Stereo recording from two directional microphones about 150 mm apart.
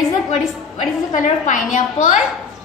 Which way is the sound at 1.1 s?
55° left (ahead or behind).